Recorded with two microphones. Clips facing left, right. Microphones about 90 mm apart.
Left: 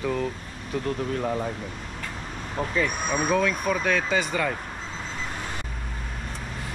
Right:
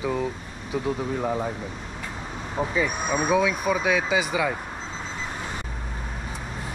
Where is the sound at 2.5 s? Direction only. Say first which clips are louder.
Right 1 dB; 5° right (ahead or behind).